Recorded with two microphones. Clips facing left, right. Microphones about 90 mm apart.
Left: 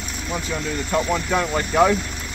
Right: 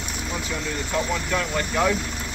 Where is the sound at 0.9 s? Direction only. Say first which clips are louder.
Left 4 dB; 20° left (ahead or behind).